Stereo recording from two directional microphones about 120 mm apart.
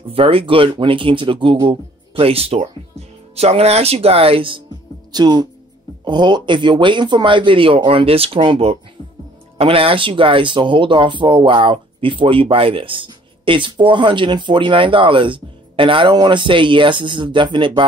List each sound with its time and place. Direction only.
0.1 s speech: 50° right (ahead or behind)
5.1 s speech: 35° right (ahead or behind)